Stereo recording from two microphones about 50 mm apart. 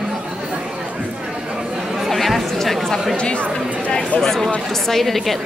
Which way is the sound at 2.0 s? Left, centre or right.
Centre.